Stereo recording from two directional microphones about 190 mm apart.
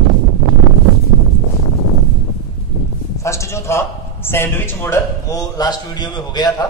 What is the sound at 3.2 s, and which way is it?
A man's voice, 15° left (ahead or behind).